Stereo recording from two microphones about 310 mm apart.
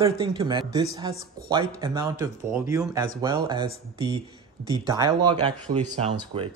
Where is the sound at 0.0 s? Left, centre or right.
Centre.